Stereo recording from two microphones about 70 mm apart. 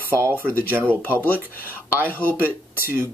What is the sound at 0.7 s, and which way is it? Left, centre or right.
Speech, right.